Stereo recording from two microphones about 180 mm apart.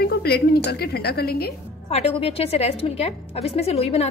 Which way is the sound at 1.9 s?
35° left (ahead or behind).